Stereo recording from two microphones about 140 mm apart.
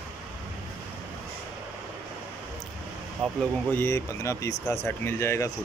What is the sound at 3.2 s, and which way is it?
Speech, centre (ahead or behind).